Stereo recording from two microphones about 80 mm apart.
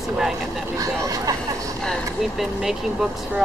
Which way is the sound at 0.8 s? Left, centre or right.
Right.